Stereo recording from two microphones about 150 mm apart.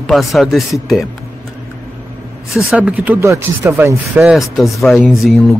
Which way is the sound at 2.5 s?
5° right (ahead or behind).